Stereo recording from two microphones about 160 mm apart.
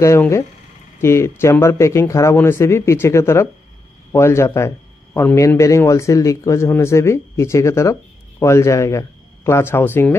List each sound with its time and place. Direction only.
0.0 s a man's voice: 20° left (ahead or behind)